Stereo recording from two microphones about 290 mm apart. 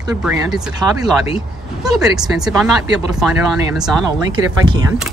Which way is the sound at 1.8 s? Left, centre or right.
Centre.